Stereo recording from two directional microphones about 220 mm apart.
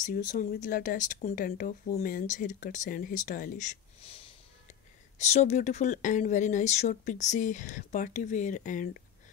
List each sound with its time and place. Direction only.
0.0 s speech: 35° left (ahead or behind)
5.2 s speech: 30° left (ahead or behind)